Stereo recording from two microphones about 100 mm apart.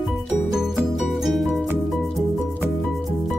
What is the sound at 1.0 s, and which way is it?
Music, centre (ahead or behind).